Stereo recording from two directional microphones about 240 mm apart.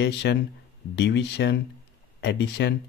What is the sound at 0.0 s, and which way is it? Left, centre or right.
Speech, left.